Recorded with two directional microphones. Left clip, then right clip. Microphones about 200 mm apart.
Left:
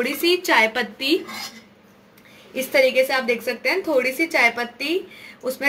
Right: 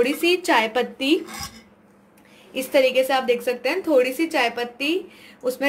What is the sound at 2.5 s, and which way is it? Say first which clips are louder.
A woman's voice: left 1 dB; 30° right (ahead or behind).